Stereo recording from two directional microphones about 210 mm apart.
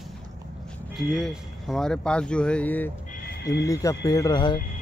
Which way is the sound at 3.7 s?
15° left (ahead or behind).